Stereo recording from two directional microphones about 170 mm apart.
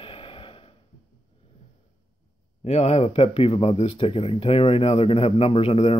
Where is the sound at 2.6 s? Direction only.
40° left (ahead or behind).